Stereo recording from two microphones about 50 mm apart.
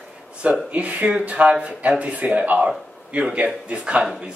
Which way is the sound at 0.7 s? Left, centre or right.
Right.